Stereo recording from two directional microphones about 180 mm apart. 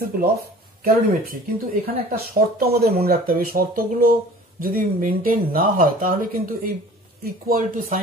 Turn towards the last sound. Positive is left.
turn(degrees=-50)  # may be behind; listen again after turning